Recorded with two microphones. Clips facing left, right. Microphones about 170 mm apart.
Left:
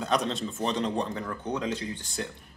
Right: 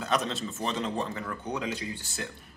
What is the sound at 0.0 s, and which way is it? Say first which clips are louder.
Speech: left 2 dB; centre (ahead or behind).